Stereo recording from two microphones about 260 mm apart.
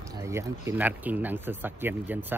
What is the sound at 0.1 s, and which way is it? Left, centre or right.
Speech, centre.